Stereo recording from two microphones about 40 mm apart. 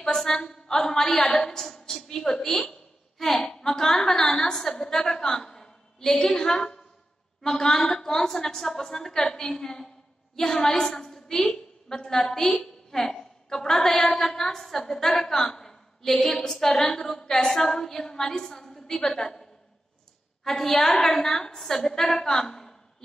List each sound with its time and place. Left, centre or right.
0.0 s a woman's voice: centre
20.4 s a woman's voice: centre